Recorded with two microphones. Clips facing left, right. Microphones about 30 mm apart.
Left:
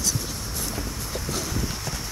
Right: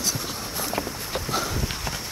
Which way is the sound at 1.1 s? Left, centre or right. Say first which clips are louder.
Right 3 dB; right.